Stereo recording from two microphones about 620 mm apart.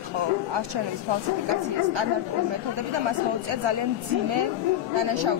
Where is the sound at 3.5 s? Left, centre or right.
Right.